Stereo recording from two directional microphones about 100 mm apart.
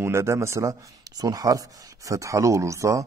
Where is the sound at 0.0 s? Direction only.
25° right (ahead or behind).